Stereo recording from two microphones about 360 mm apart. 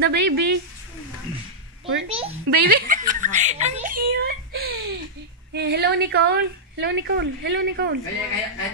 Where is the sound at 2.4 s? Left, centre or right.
Right.